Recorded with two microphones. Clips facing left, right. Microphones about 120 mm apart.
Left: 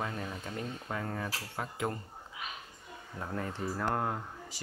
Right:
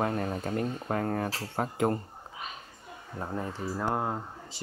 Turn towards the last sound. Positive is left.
turn(degrees=-20)  # may be behind; listen again after turning